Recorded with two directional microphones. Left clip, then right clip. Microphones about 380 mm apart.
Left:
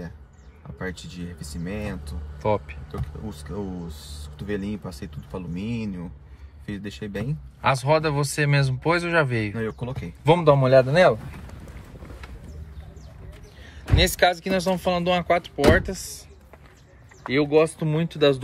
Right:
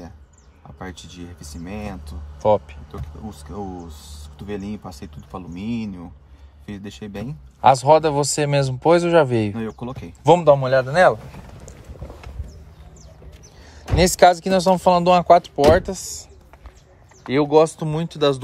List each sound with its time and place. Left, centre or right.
1.5 s speech: centre
13.9 s speech: right
14.5 s speech: centre
17.3 s speech: centre